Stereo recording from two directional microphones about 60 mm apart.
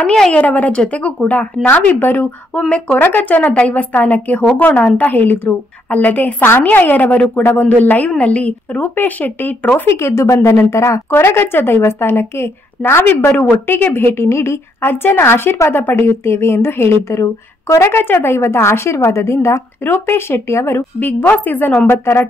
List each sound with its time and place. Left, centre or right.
0.0 s speech: centre
0.3 s a woman's voice: left
9.8 s speech: left
10.5 s a woman's voice: left
17.9 s speech: left
19.8 s speech: left
21.0 s a woman's voice: left